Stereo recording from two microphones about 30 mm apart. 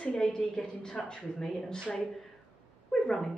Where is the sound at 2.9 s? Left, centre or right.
Centre.